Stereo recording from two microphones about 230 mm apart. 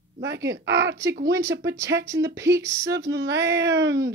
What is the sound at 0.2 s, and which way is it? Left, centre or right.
Speech, right.